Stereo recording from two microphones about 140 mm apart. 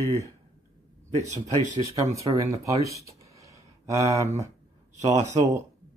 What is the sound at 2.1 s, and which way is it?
Speech, 25° right (ahead or behind).